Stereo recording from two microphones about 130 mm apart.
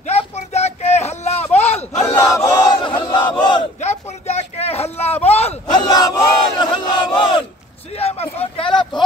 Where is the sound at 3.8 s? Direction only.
55° left (ahead or behind).